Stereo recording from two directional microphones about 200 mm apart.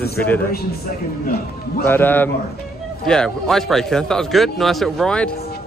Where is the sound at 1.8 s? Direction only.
10° left (ahead or behind).